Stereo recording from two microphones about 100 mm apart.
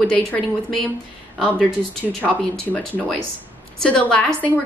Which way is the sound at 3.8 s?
10° left (ahead or behind).